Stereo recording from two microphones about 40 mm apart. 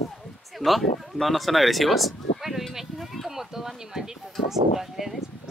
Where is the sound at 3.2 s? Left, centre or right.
Centre.